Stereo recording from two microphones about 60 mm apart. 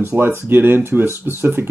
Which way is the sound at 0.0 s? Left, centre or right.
Right.